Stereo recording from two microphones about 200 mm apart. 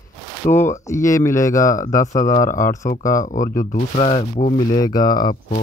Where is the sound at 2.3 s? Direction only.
40° left (ahead or behind).